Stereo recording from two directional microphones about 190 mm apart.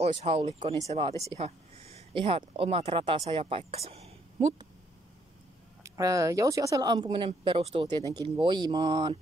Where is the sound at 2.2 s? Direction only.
30° right (ahead or behind).